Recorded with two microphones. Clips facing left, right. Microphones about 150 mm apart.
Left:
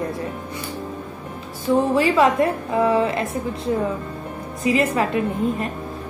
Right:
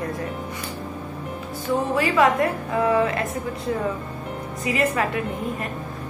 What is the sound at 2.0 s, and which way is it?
A woman's voice, 25° left (ahead or behind).